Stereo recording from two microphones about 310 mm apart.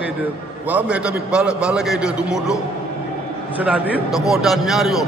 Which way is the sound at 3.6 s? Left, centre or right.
Centre.